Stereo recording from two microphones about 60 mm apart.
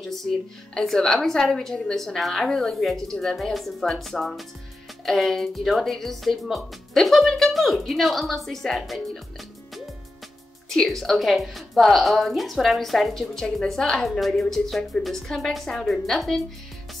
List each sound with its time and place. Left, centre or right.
0.1 s a woman's voice: centre
10.7 s a woman's voice: centre